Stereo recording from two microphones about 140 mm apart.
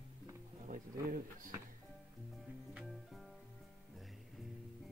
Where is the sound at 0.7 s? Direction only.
75° right (ahead or behind).